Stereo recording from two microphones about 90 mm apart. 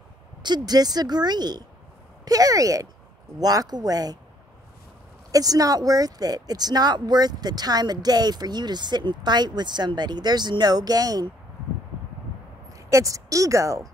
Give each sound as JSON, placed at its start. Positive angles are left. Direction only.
{"t": 0.4, "sound": "speech", "side_deg": -50}
{"t": 5.3, "sound": "speech", "side_deg": -40}
{"t": 12.7, "sound": "speech", "side_deg": -40}